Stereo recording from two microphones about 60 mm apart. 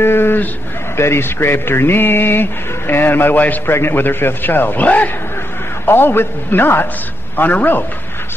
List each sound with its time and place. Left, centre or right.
0.0 s speech: left
5.9 s speech: left